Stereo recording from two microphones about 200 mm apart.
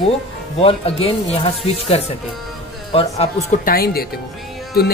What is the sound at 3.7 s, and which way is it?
Speech, 50° left (ahead or behind).